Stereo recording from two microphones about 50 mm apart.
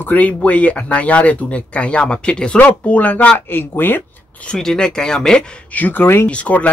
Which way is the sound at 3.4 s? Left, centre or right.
Left.